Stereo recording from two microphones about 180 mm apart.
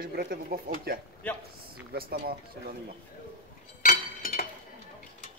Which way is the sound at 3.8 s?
45° left (ahead or behind).